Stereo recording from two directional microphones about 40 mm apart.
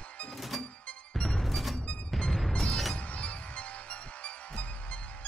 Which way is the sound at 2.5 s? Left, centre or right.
Left.